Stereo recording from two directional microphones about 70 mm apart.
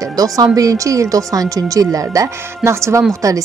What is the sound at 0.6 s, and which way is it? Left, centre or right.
Speech, right.